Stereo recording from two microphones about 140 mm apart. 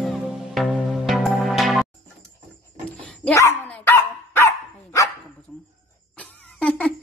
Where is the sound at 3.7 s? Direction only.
15° left (ahead or behind).